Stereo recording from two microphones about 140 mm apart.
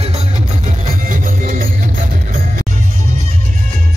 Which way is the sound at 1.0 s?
75° right (ahead or behind).